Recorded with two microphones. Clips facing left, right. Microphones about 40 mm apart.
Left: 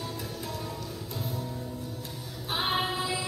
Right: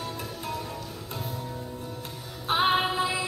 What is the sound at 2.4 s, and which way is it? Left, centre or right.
Music, right.